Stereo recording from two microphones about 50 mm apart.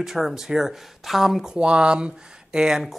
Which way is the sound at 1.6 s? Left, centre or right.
Centre.